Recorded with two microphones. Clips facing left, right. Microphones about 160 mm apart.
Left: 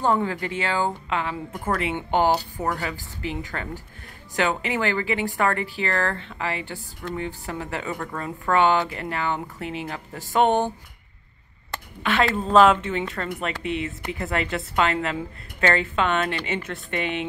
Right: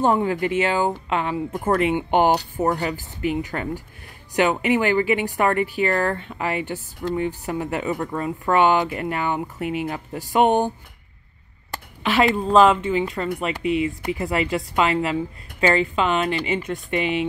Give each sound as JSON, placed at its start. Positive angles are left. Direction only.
{"t": 0.0, "sound": "a woman's voice", "side_deg": -20}
{"t": 1.5, "sound": "speech", "side_deg": -30}
{"t": 1.9, "sound": "a woman's voice", "side_deg": -15}
{"t": 2.6, "sound": "speech", "side_deg": -25}
{"t": 3.2, "sound": "a woman's voice", "side_deg": -15}
{"t": 12.1, "sound": "speech", "side_deg": -5}